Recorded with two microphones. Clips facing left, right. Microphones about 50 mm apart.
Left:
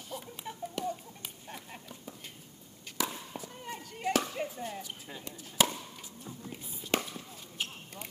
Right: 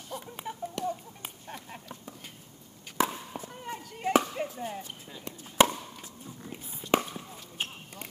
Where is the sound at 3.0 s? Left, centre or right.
Right.